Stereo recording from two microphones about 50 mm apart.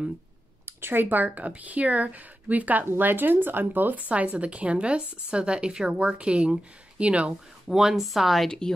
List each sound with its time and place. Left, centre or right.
0.7 s speech: right
4.1 s a woman's voice: right
7.6 s speech: centre
8.5 s speech: centre